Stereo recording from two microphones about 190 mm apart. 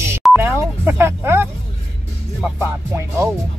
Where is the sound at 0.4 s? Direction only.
10° right (ahead or behind).